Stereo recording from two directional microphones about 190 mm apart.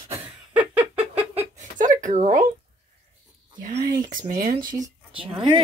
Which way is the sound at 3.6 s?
45° right (ahead or behind).